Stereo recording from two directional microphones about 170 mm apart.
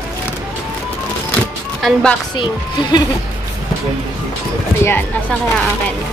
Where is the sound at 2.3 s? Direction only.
25° left (ahead or behind).